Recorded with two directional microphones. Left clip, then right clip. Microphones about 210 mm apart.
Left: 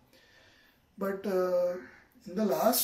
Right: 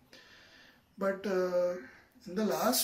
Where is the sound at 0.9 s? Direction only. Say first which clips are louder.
Left 1 dB; 5° left (ahead or behind).